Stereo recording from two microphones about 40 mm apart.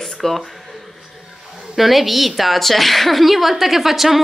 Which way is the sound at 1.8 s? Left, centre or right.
Centre.